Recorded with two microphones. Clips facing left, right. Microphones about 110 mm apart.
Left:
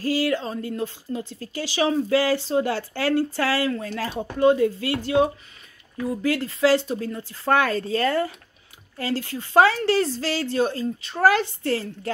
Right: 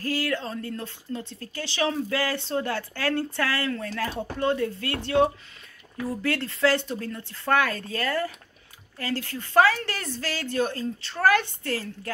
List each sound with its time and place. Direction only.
0.0 s speech: 15° left (ahead or behind)
7.0 s speech: 20° left (ahead or behind)